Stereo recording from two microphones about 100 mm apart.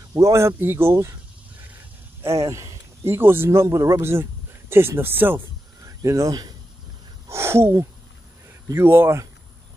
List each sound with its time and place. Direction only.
0.1 s speech: 30° right (ahead or behind)
2.2 s speech: 30° right (ahead or behind)
5.9 s speech: 35° right (ahead or behind)
7.2 s speech: 25° right (ahead or behind)